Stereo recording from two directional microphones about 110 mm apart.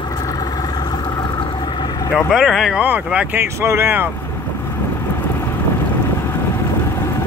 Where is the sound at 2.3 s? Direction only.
Centre (ahead or behind).